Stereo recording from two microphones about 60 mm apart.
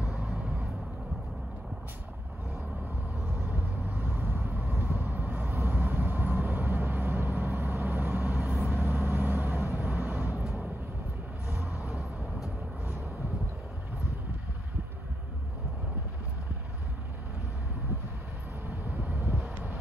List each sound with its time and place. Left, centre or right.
4.1 s vehicle: right
11.8 s vehicle: left